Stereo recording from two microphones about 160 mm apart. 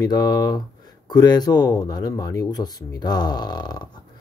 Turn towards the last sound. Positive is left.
turn(degrees=25)  # may be behind; listen again after turning